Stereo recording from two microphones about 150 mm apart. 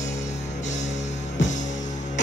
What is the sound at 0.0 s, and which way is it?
Music, 50° left (ahead or behind).